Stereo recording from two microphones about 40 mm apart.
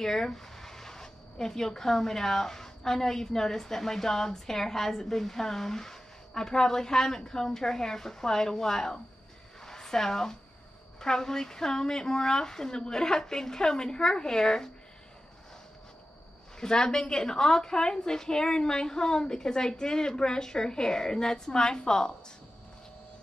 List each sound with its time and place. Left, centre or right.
0.0 s speech: centre
9.7 s a sound: centre
11.0 s speech: centre
16.5 s speech: centre